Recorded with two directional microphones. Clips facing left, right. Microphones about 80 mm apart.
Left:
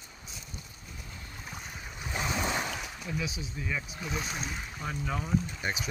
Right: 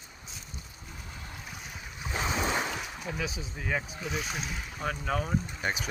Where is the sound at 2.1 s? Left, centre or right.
Right.